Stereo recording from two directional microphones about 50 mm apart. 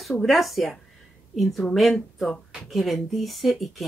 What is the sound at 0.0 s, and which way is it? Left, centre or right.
A woman's voice, centre.